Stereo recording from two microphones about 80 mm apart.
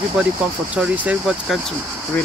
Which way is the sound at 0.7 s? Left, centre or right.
Centre.